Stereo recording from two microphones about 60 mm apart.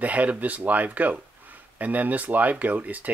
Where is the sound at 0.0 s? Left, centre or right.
Right.